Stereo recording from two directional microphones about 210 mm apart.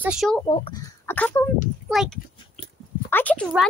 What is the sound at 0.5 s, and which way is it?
Speech, 25° left (ahead or behind).